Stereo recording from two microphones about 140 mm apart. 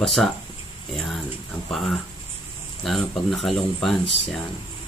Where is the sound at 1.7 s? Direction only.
Centre (ahead or behind).